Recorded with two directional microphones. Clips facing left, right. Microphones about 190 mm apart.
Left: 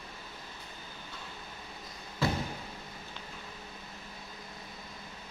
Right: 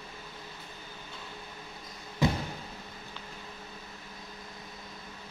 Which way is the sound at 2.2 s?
15° right (ahead or behind).